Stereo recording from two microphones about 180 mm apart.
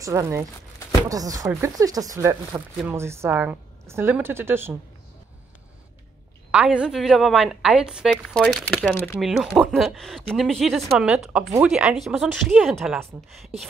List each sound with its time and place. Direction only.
0.0 s a woman's voice: 15° right (ahead or behind)
6.5 s a woman's voice: 5° right (ahead or behind)